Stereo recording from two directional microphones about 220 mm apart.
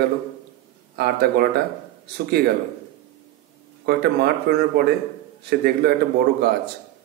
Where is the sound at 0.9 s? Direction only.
45° right (ahead or behind).